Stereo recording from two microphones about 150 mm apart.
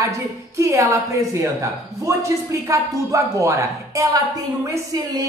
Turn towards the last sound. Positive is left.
turn(degrees=-20)  # may be behind; listen again after turning